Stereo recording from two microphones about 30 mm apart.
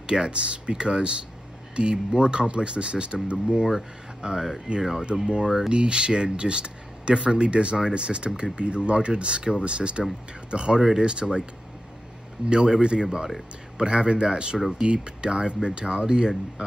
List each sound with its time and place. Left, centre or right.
0.3 s speech: right
10.8 s speech: centre
11.1 s speech: right
12.4 s speech: right
13.7 s speech: right